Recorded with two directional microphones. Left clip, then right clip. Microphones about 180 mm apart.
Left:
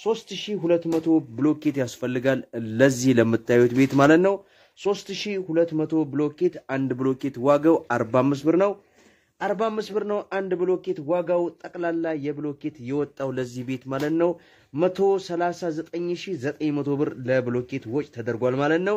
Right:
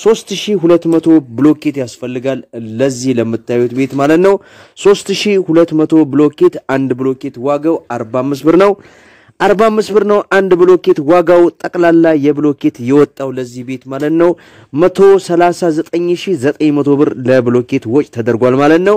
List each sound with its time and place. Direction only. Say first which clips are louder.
0.0 s a man's voice: right 15 dB; 50° right (ahead or behind)
1.6 s speech: right 8 dB; 20° right (ahead or behind)
4.8 s a man's voice: right 16 dB; 50° right (ahead or behind)
6.8 s speech: right 7 dB; 25° right (ahead or behind)
7.2 s speech: right 6 dB; 15° right (ahead or behind)
8.5 s a man's voice: right 13 dB; 45° right (ahead or behind)
13.2 s speech: right 9 dB; 25° right (ahead or behind)
14.0 s a man's voice: right 13 dB; 45° right (ahead or behind)